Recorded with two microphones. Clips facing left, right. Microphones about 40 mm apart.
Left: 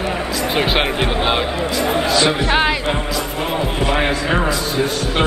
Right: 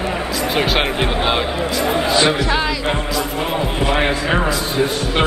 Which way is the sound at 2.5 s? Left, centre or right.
Left.